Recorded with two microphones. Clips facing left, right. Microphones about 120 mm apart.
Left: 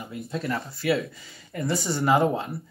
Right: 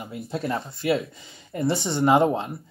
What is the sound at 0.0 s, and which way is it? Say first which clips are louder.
Speech: right 2 dB; 30° right (ahead or behind).